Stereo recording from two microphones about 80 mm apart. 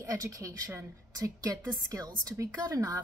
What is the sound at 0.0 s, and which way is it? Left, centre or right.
A woman's voice, right.